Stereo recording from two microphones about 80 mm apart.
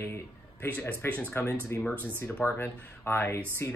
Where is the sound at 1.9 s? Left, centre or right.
Right.